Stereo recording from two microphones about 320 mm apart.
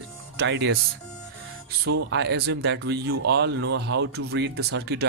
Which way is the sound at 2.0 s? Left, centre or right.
Right.